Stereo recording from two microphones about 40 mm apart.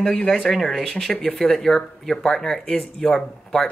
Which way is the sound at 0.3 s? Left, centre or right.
Centre.